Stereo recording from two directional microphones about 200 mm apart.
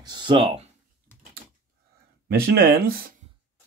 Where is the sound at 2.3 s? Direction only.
50° right (ahead or behind).